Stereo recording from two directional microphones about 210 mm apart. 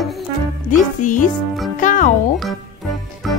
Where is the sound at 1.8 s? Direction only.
35° left (ahead or behind).